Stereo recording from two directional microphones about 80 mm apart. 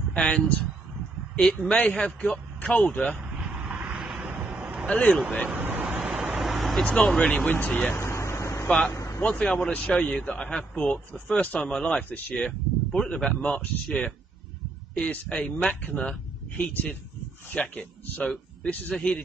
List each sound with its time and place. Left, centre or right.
0.1 s a man's voice: centre
3.7 s vehicle: centre
4.2 s a sound: centre
4.8 s speech: centre
5.6 s vehicle: right
5.9 s vehicle: centre
6.8 s a man's voice: centre
8.0 s vehicle: left
8.6 s speech: centre
8.9 s vehicle: left
9.4 s a man's voice: centre